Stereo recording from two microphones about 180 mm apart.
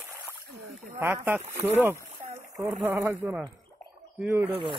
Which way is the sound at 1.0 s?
15° right (ahead or behind).